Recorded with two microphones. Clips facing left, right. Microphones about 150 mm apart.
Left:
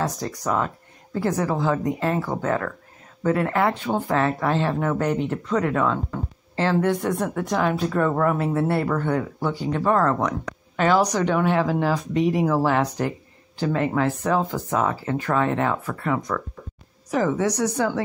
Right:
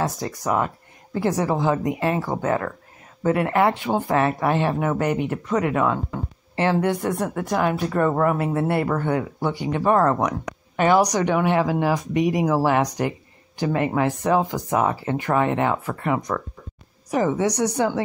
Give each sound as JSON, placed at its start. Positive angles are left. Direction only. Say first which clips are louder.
{"t": 0.2, "sound": "speech", "louder": "right 1 dB", "side_deg": -10}